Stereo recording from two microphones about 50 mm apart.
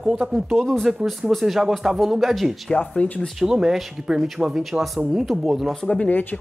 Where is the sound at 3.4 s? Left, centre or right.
Centre.